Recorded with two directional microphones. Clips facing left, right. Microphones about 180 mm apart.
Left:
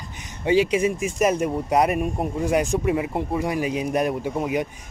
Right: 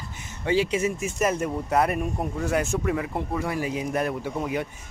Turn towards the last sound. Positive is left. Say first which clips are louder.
# left 4 dB
turn(degrees=15)  # may be behind; listen again after turning